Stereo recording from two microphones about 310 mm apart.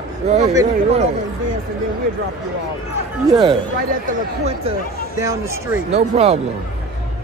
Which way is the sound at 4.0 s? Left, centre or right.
Right.